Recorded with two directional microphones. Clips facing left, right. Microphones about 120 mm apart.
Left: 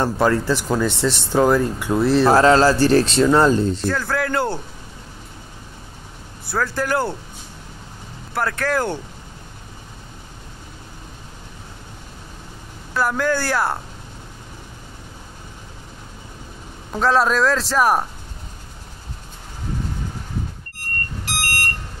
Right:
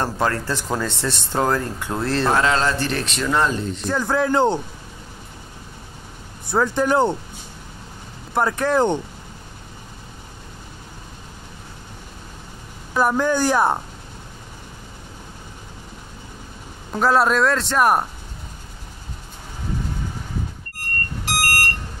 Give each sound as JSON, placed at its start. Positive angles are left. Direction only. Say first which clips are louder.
{"t": 0.0, "sound": "speech", "louder": "left 4 dB", "side_deg": 15}
{"t": 2.3, "sound": "speech", "louder": "left 6 dB", "side_deg": 35}
{"t": 3.8, "sound": "speech", "louder": "right 1 dB", "side_deg": -20}
{"t": 6.4, "sound": "speech", "louder": "right 3 dB", "side_deg": -20}
{"t": 8.4, "sound": "speech", "louder": "right 3 dB", "side_deg": -20}
{"t": 12.9, "sound": "speech", "louder": "right 1 dB", "side_deg": -20}
{"t": 16.9, "sound": "a man's voice", "louder": "even", "side_deg": -5}
{"t": 21.4, "sound": "smoke detector", "louder": "right 4 dB", "side_deg": -45}